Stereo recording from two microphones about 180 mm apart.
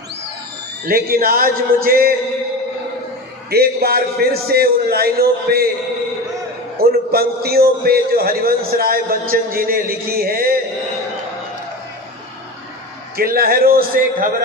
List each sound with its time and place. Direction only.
0.8 s a man's voice: 55° right (ahead or behind)
3.4 s a man's voice: 60° right (ahead or behind)
6.8 s a man's voice: 60° right (ahead or behind)
13.1 s a man's voice: 55° right (ahead or behind)